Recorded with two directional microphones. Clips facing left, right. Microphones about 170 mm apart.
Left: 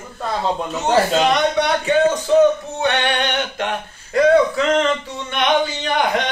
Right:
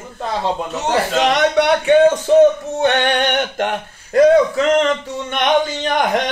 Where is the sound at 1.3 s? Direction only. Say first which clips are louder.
Right 3 dB; 80° right.